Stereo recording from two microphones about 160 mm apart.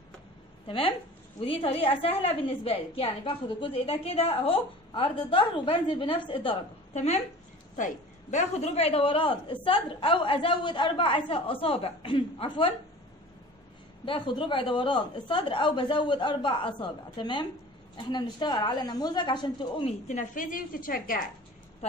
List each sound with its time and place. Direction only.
0.7 s a woman's voice: 35° left (ahead or behind)
6.9 s a woman's voice: 45° left (ahead or behind)
14.0 s a woman's voice: 30° left (ahead or behind)
20.1 s a woman's voice: 55° left (ahead or behind)